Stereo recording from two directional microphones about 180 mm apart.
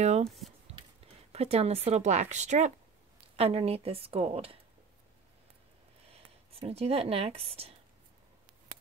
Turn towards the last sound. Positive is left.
turn(degrees=-35)  # may be behind; listen again after turning